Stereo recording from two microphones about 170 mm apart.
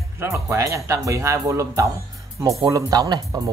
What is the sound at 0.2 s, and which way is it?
A man's voice, 15° right (ahead or behind).